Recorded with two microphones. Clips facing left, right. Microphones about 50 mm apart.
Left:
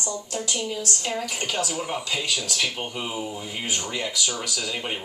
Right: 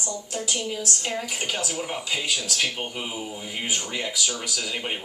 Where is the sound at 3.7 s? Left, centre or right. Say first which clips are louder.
Even; centre.